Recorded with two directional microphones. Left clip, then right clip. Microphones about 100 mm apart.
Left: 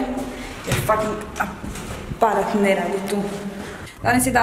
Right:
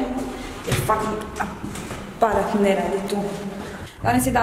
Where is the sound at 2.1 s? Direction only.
Centre (ahead or behind).